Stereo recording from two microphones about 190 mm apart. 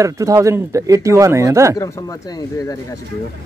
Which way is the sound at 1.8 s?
15° left (ahead or behind).